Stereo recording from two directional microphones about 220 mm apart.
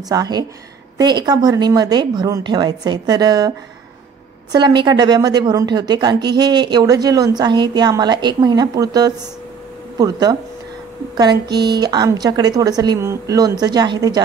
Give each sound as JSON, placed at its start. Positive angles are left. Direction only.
{"t": 0.1, "sound": "a woman's voice", "side_deg": -15}